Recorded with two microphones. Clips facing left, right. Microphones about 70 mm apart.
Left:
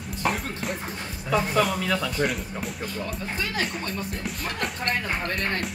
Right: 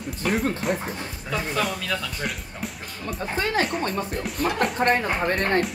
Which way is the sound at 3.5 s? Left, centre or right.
Right.